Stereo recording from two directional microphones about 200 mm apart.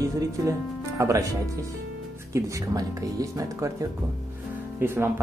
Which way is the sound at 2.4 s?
15° right (ahead or behind).